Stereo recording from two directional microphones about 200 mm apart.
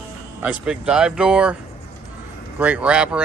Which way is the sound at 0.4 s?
5° right (ahead or behind).